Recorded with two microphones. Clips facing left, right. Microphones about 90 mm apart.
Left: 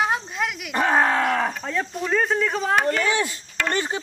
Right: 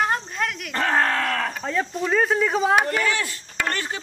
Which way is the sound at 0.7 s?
15° left (ahead or behind).